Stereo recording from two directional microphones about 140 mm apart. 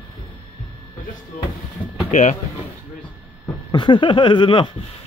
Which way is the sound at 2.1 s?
60° left (ahead or behind).